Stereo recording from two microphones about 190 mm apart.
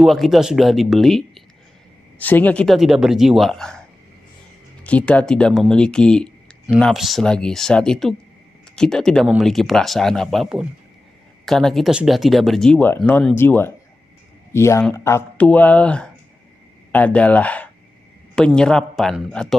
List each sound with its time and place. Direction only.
0.0 s speech: centre (ahead or behind)
4.8 s speech: 5° left (ahead or behind)